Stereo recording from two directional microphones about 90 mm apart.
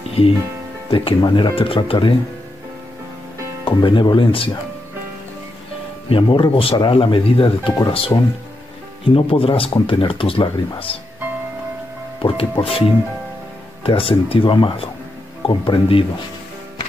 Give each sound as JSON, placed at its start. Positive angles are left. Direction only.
{"t": 0.2, "sound": "speech", "side_deg": 90}
{"t": 0.8, "sound": "speech", "side_deg": 75}
{"t": 3.6, "sound": "speech", "side_deg": 65}
{"t": 6.0, "sound": "speech", "side_deg": 70}
{"t": 10.9, "sound": "speech", "side_deg": 90}
{"t": 12.2, "sound": "speech", "side_deg": 85}
{"t": 13.8, "sound": "speech", "side_deg": 90}
{"t": 15.4, "sound": "speech", "side_deg": 85}